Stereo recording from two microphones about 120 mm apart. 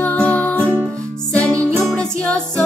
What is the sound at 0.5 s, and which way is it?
Music, 15° right (ahead or behind).